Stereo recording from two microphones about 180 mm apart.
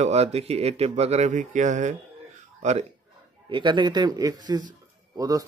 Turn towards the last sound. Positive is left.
turn(degrees=-20)  # may be behind; listen again after turning